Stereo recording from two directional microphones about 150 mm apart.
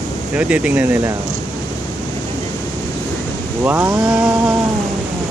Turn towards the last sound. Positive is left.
turn(degrees=-5)  # may be behind; listen again after turning